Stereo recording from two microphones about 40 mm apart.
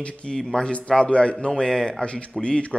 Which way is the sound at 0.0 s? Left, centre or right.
Left.